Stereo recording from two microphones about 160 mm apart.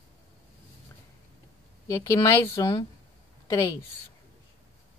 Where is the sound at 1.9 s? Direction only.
20° left (ahead or behind).